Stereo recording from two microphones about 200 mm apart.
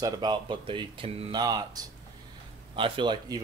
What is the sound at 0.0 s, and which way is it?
Speech, 20° right (ahead or behind).